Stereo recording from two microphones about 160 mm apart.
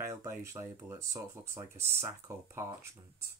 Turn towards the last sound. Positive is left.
turn(degrees=-15)  # may be behind; listen again after turning